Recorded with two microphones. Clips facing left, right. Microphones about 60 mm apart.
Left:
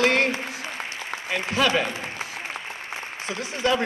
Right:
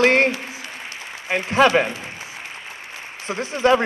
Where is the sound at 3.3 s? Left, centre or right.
Right.